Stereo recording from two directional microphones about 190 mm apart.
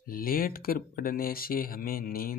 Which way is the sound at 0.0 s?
50° left (ahead or behind).